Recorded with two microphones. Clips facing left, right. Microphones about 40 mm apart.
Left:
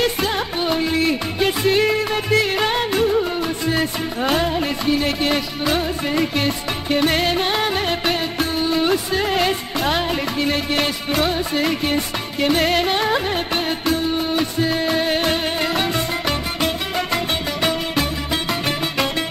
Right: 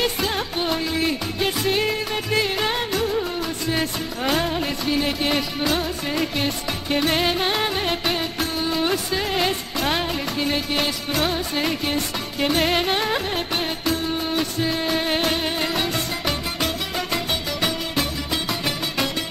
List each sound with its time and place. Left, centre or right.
0.0 s music: centre
8.0 s music of bollywood: left
8.5 s music: left
13.1 s music of bollywood: centre
14.8 s music: centre